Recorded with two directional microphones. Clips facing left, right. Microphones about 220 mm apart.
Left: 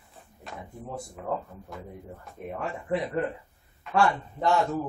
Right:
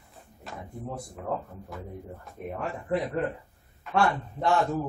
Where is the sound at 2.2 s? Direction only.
Centre (ahead or behind).